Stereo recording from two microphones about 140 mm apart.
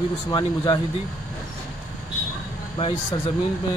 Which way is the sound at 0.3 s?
30° left (ahead or behind).